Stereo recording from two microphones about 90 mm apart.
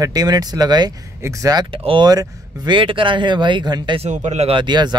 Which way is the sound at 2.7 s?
70° right (ahead or behind).